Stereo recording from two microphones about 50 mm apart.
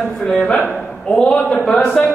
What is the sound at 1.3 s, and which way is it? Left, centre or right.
Speech, left.